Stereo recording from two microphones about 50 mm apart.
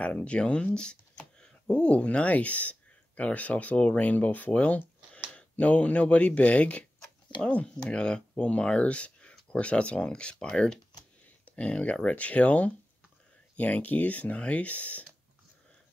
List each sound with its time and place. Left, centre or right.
0.0 s speech: left